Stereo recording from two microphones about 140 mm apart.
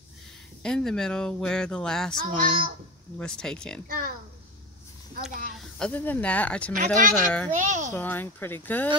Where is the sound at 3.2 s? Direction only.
5° left (ahead or behind).